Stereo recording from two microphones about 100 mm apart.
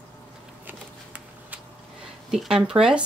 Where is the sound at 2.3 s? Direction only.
5° right (ahead or behind).